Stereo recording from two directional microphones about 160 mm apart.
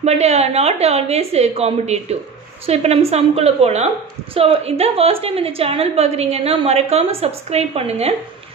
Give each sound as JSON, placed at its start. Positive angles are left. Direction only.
{"t": 0.0, "sound": "a woman's voice", "side_deg": -40}